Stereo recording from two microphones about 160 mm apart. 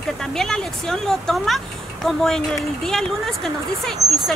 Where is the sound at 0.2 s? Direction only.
5° left (ahead or behind).